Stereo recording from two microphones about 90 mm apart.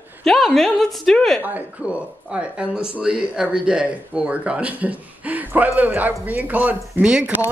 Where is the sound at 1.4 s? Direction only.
15° right (ahead or behind).